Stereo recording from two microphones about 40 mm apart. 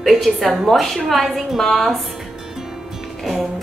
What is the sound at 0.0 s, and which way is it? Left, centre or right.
A woman's voice, centre.